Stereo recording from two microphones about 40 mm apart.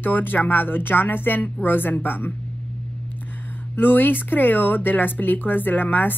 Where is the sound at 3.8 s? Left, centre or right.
Left.